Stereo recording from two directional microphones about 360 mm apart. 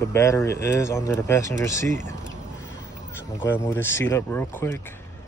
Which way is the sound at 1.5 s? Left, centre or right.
Right.